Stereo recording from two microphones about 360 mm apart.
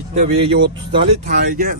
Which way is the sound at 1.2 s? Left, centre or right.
Right.